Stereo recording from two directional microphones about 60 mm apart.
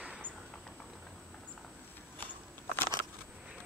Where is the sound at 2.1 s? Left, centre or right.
Left.